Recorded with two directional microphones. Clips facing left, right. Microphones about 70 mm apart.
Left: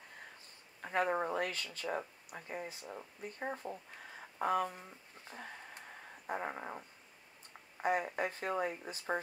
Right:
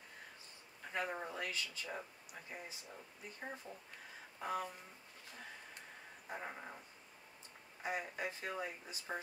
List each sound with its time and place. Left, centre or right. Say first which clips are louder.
0.8 s speech: left 8 dB; left
6.2 s speech: left 7 dB; left
7.8 s speech: left 7 dB; left